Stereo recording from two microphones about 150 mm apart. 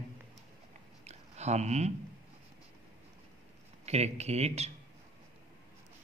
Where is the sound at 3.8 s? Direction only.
45° right (ahead or behind).